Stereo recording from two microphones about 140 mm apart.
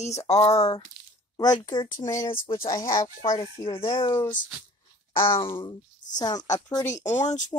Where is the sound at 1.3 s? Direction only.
30° left (ahead or behind).